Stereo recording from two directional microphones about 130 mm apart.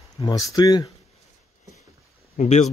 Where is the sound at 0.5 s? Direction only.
30° left (ahead or behind).